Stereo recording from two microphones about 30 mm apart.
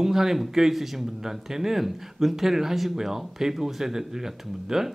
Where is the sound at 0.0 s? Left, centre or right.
Centre.